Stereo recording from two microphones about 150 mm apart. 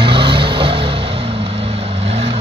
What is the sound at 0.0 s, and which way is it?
Vehicle, 35° right (ahead or behind).